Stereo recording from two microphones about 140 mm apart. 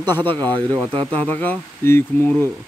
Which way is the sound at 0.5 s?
25° right (ahead or behind).